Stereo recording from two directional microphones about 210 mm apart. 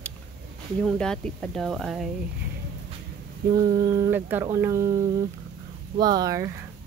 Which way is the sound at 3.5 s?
20° right (ahead or behind).